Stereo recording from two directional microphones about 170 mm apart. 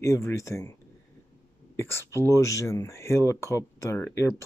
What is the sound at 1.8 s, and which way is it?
Speech, 15° left (ahead or behind).